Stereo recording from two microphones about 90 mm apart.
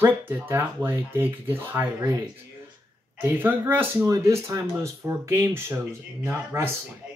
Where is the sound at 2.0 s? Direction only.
40° right (ahead or behind).